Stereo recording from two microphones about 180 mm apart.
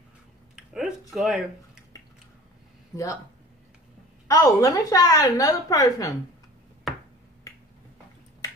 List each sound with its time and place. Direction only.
0.6 s a sound: 5° right (ahead or behind)
1.1 s speech: centre (ahead or behind)
4.3 s a woman's voice: 20° left (ahead or behind)